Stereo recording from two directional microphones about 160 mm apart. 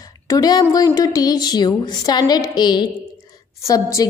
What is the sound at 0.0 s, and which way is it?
A woman's voice, 25° left (ahead or behind).